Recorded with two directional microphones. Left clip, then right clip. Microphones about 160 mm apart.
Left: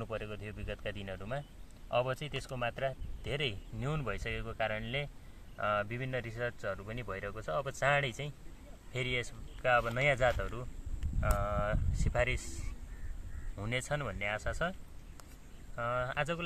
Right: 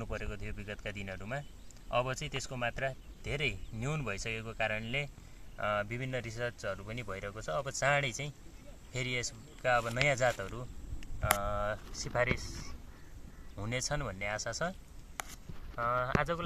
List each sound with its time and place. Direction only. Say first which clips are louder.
0.0 s speech: left 1 dB; centre (ahead or behind)
13.6 s speech: even; 5° left (ahead or behind)